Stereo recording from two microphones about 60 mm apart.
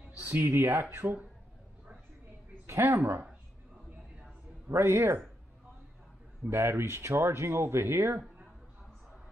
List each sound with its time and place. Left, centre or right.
0.2 s speech: right
2.6 s a woman's voice: right
4.6 s speech: right
6.5 s speech: right